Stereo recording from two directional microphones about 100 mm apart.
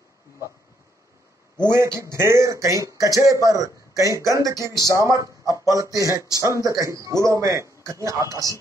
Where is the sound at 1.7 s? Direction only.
25° right (ahead or behind).